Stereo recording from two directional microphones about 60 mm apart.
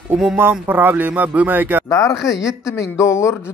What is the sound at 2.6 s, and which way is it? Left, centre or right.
Speech, left.